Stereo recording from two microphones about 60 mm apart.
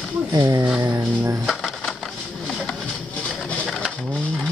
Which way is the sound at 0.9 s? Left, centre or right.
Right.